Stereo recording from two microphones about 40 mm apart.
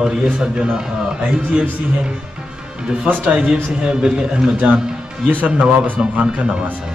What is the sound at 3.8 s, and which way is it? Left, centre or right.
Speech, centre.